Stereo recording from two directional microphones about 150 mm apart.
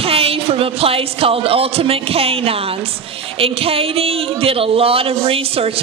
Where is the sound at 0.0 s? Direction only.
40° right (ahead or behind).